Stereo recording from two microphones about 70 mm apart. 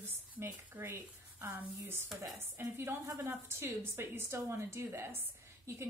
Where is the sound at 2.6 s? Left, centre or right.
Right.